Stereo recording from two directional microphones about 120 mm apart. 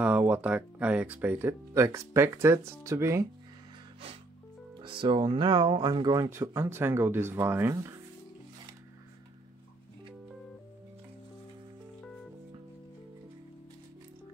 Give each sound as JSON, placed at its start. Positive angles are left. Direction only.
{"t": 0.0, "sound": "speech", "side_deg": -10}
{"t": 1.7, "sound": "speech", "side_deg": -25}
{"t": 4.8, "sound": "speech", "side_deg": -45}